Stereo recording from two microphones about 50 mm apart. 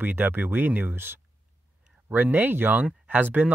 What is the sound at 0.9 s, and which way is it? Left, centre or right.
Speech, right.